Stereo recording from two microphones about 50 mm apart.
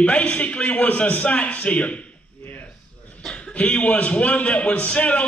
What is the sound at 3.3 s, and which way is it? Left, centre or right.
A man's voice, left.